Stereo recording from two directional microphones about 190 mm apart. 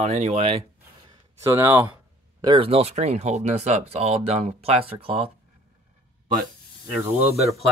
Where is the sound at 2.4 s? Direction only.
25° right (ahead or behind).